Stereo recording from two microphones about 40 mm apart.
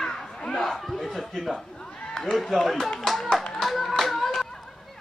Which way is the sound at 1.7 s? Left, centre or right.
Centre.